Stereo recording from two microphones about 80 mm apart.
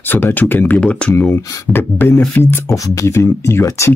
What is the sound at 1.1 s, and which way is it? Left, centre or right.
Speech, left.